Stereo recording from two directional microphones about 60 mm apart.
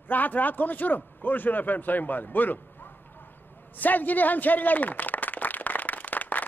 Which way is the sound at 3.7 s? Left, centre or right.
Left.